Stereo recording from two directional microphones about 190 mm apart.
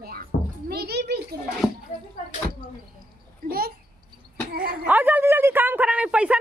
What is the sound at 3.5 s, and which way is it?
A child's voice, 50° right (ahead or behind).